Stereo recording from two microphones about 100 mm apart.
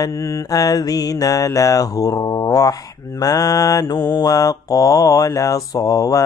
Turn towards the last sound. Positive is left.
turn(degrees=40)  # may be behind; listen again after turning